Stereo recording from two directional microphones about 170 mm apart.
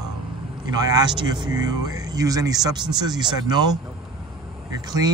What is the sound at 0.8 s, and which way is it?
A man's voice, 25° right (ahead or behind).